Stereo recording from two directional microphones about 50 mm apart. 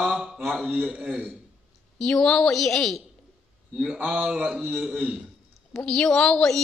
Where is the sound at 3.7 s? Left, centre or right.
Centre.